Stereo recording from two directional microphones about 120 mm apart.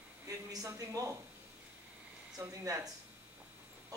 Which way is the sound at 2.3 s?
25° right (ahead or behind).